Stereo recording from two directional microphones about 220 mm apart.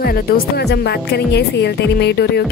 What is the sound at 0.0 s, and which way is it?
Speech, 45° left (ahead or behind).